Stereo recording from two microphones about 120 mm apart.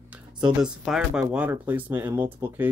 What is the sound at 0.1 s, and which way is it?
Speech, 10° right (ahead or behind).